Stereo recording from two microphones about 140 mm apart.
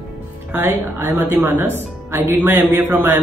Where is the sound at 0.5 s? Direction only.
15° right (ahead or behind).